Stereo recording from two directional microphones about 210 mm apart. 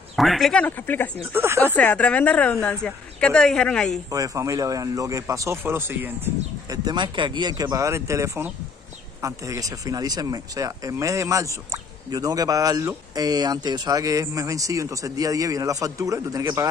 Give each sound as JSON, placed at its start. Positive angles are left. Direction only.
{"t": 0.1, "sound": "a woman's voice", "side_deg": 0}
{"t": 1.3, "sound": "speech", "side_deg": -10}
{"t": 1.8, "sound": "a woman's voice", "side_deg": 5}
{"t": 4.1, "sound": "speech", "side_deg": -15}